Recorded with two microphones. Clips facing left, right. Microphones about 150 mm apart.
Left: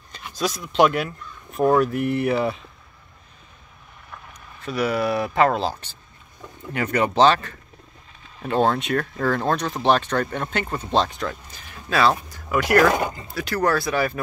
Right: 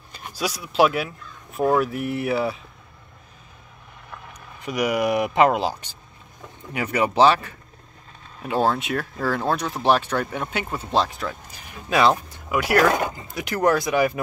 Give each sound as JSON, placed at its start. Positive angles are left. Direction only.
{"t": 0.3, "sound": "speech", "side_deg": -10}
{"t": 4.6, "sound": "speech", "side_deg": -15}
{"t": 12.8, "sound": "speech", "side_deg": 0}
{"t": 13.1, "sound": "speech", "side_deg": -20}